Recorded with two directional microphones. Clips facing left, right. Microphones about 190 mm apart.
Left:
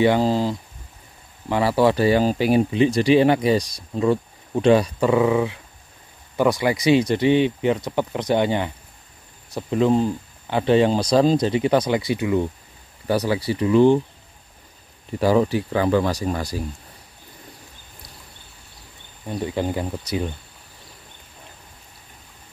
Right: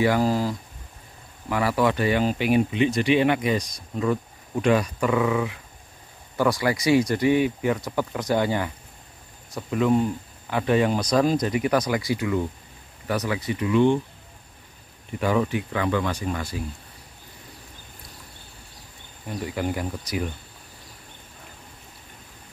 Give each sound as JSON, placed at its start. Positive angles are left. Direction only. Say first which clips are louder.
{"t": 0.0, "sound": "speech", "louder": "left 3 dB", "side_deg": 25}
{"t": 15.1, "sound": "speech", "louder": "left 5 dB", "side_deg": 35}
{"t": 19.2, "sound": "speech", "louder": "left 3 dB", "side_deg": 25}